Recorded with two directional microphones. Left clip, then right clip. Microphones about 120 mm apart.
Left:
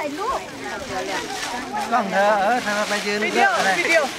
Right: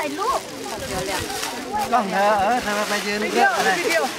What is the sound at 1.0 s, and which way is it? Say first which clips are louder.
Speech: even; 15° right (ahead or behind).